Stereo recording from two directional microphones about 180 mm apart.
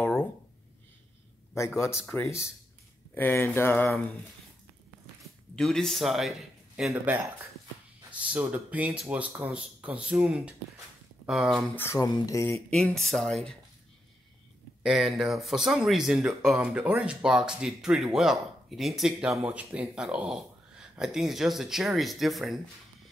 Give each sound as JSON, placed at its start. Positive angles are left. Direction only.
{"t": 0.0, "sound": "a sound", "side_deg": 10}
{"t": 1.8, "sound": "speech", "side_deg": 15}
{"t": 5.6, "sound": "speech", "side_deg": 0}
{"t": 11.7, "sound": "speech", "side_deg": 15}
{"t": 12.6, "sound": "speech", "side_deg": 5}
{"t": 14.8, "sound": "speech", "side_deg": 0}